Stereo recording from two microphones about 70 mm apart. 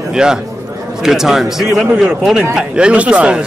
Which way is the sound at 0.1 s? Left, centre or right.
Centre.